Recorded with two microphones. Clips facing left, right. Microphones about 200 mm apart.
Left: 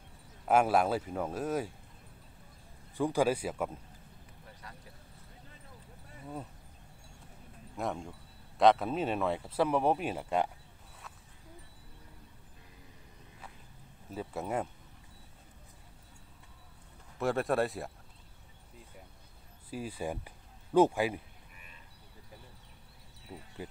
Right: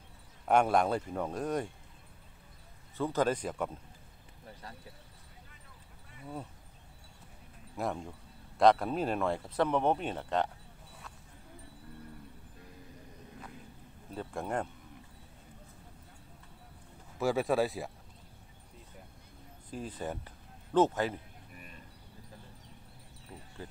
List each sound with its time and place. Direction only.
0.5 s speech: 5° left (ahead or behind)
3.0 s speech: 10° left (ahead or behind)
7.7 s speech: centre (ahead or behind)
14.1 s speech: 5° left (ahead or behind)
17.2 s speech: centre (ahead or behind)
19.7 s speech: 10° left (ahead or behind)
23.3 s speech: 20° left (ahead or behind)